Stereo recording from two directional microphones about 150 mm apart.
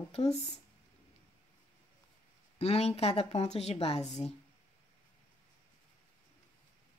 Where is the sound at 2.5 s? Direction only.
45° left (ahead or behind).